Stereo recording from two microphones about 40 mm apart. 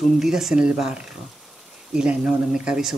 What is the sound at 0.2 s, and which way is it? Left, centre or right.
Speech, centre.